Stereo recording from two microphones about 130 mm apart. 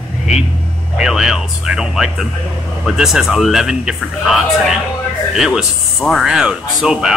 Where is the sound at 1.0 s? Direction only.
5° right (ahead or behind).